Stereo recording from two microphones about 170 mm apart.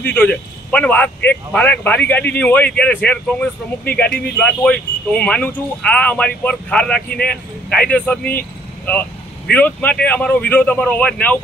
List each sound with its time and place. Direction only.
0.0 s a man's voice: 10° left (ahead or behind)
7.1 s speech: 60° left (ahead or behind)
7.7 s a man's voice: 5° left (ahead or behind)
9.5 s a man's voice: 10° left (ahead or behind)